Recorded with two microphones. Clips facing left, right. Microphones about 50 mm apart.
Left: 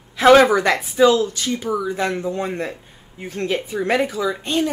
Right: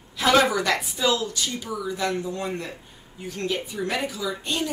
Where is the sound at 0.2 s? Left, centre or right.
Left.